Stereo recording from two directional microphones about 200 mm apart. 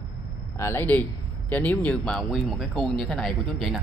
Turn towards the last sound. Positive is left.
turn(degrees=0)  # may be behind; listen again after turning